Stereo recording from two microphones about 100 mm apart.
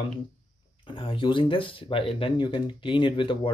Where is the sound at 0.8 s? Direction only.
60° left (ahead or behind).